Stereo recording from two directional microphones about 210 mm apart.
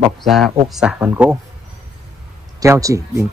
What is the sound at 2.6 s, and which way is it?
Speech, 15° right (ahead or behind).